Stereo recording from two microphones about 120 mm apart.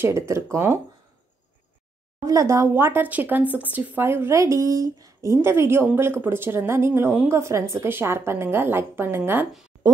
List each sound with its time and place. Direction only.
0.0 s speech: 25° right (ahead or behind)
2.2 s speech: 25° right (ahead or behind)